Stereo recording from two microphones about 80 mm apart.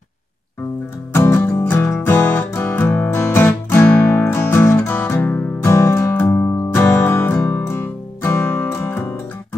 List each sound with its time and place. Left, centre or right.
1.1 s music: left
3.8 s music: centre
4.2 s music: left